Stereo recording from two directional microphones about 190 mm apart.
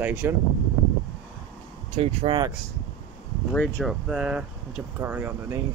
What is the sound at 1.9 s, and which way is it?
Speech, 25° right (ahead or behind).